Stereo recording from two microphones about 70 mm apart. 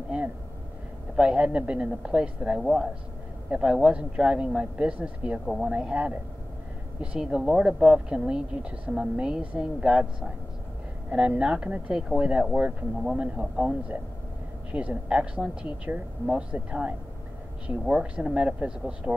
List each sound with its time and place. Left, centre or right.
1.1 s speech: centre